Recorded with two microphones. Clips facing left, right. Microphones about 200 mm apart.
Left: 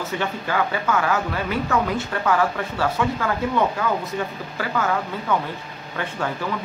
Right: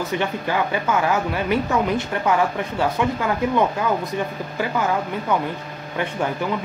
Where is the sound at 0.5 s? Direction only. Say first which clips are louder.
Even; 20° right (ahead or behind).